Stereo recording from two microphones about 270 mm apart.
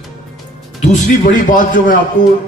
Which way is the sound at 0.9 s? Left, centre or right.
Left.